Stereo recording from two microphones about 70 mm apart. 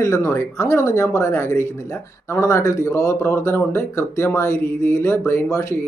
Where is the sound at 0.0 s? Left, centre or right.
Left.